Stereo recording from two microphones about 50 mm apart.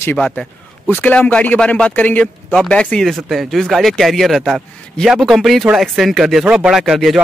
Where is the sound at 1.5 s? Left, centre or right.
Centre.